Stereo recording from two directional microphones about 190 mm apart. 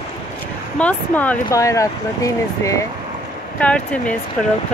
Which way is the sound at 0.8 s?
5° left (ahead or behind).